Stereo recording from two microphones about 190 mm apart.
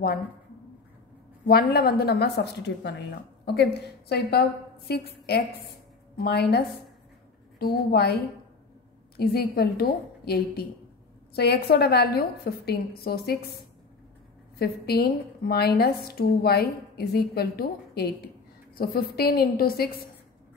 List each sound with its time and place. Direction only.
1.4 s a woman's voice: 55° left (ahead or behind)
4.1 s a woman's voice: 55° left (ahead or behind)
14.6 s a woman's voice: 55° left (ahead or behind)